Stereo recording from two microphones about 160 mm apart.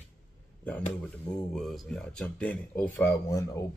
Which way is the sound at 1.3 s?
5° left (ahead or behind).